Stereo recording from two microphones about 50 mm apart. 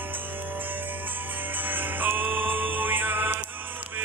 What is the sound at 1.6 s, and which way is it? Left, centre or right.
Music, right.